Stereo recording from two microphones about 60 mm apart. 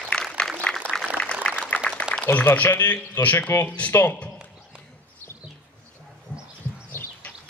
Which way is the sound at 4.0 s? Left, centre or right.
Left.